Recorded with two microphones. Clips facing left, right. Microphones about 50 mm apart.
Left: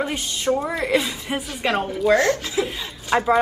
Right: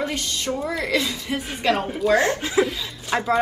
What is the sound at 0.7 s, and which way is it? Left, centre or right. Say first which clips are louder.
A woman's voice: left 2 dB; centre.